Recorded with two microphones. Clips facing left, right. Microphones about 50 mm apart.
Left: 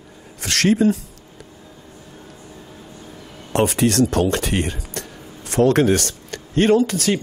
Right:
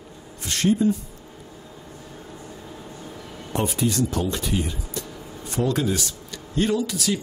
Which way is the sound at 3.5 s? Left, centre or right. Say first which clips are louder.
Left 6 dB; left.